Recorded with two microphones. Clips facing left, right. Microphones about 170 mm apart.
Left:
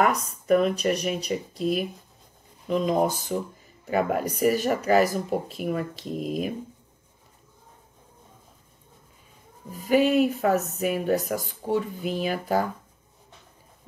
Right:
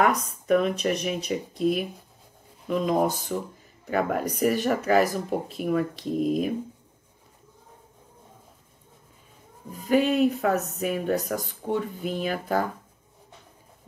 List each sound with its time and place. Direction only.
0.0 s speech: centre (ahead or behind)
9.8 s speech: 5° left (ahead or behind)